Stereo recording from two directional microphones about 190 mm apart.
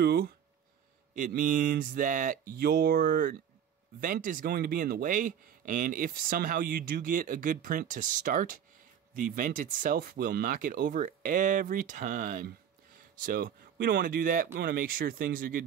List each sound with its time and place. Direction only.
0.0 s speech: 55° right (ahead or behind)
1.1 s speech: 45° right (ahead or behind)